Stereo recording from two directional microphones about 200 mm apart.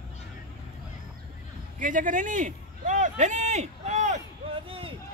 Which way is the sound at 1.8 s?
40° right (ahead or behind).